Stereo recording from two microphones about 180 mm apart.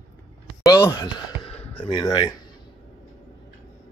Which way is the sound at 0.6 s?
20° left (ahead or behind).